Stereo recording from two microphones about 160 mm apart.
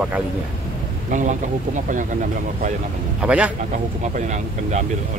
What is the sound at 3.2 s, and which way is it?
Speech, 10° right (ahead or behind).